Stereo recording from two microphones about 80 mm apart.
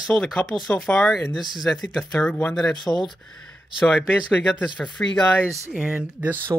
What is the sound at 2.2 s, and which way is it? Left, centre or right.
Speech, left.